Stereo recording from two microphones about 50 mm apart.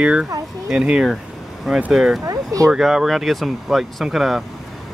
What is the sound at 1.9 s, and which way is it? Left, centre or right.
Speech, centre.